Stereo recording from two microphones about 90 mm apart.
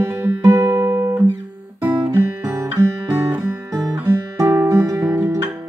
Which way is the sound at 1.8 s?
25° right (ahead or behind).